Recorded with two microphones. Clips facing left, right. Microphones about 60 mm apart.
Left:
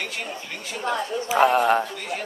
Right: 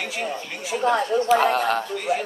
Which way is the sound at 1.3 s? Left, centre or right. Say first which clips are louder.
Left 3 dB; centre.